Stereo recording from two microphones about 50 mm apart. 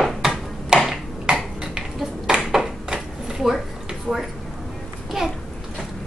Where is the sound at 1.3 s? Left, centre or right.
Centre.